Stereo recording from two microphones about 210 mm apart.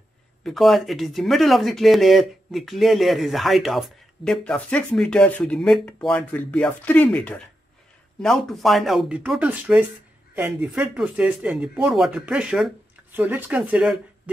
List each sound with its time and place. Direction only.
0.4 s speech: centre (ahead or behind)